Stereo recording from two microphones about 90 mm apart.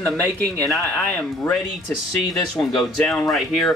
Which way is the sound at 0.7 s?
10° left (ahead or behind).